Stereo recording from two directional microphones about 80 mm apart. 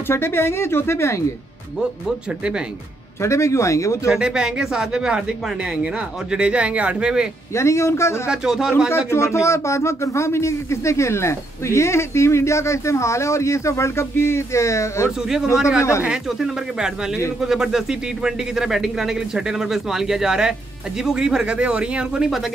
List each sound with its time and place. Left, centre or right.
0.1 s speech: left
3.2 s speech: left
4.1 s speech: centre
7.5 s speech: left
8.3 s speech: centre
8.9 s speech: left
15.0 s speech: centre